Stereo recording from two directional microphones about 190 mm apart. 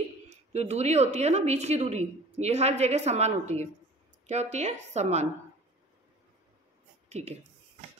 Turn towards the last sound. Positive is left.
turn(degrees=-35)  # may be behind; listen again after turning